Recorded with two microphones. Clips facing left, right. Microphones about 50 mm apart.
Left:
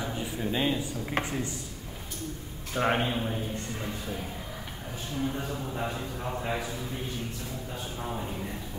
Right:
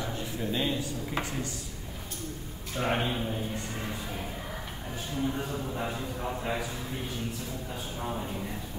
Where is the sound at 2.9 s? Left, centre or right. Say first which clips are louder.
Right 2 dB; centre.